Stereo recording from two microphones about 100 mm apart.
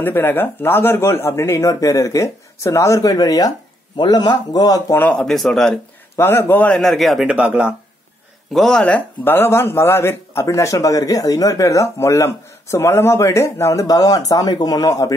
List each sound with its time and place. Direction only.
0.0 s speech: 20° left (ahead or behind); by 4.9 s 40° left (ahead or behind)
4.9 s speech: 15° left (ahead or behind)
5.3 s speech: centre (ahead or behind)
6.1 s speech: 25° left (ahead or behind)
6.8 s speech: centre (ahead or behind)
7.2 s speech: 15° right (ahead or behind)
8.5 s speech: 5° left (ahead or behind); by 15.1 s 35° left (ahead or behind)